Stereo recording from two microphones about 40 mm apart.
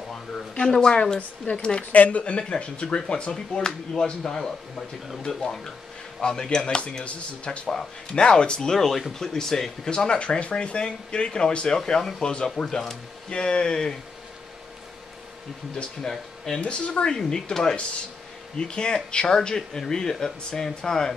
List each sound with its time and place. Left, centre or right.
0.1 s a sound: centre
1.0 s speech: centre
6.2 s speech: centre
7.1 s speech: left
7.6 s speech: centre
8.7 s speech: centre
9.8 s speech: left
12.6 s speech: centre
13.3 s speech: left
15.7 s speech: centre
16.6 s speech: left
17.1 s speech: centre